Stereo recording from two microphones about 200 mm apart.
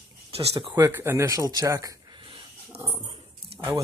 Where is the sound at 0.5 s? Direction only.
15° right (ahead or behind).